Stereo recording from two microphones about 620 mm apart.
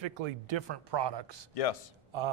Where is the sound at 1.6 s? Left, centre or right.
Left.